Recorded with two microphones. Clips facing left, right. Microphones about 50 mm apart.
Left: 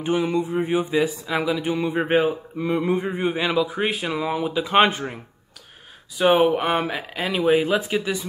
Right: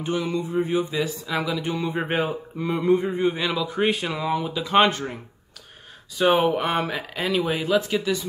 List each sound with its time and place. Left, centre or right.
0.0 s speech: left
2.5 s mantra: centre
3.2 s speech: centre